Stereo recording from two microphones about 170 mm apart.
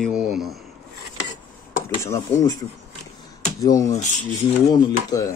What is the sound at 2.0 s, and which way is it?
Speech, 15° left (ahead or behind).